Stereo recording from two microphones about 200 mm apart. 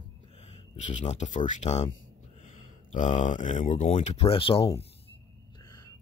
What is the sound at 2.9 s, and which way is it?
Speech, 35° left (ahead or behind).